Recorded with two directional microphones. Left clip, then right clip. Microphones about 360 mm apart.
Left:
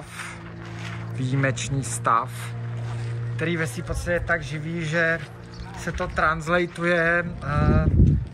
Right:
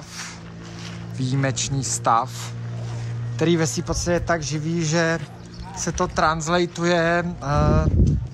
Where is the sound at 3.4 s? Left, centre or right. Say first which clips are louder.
Right 6 dB; centre.